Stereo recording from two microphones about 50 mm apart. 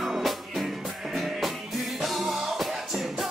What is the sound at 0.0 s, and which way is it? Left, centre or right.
Music, centre.